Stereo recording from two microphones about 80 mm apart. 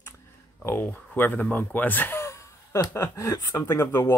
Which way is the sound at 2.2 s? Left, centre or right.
Left.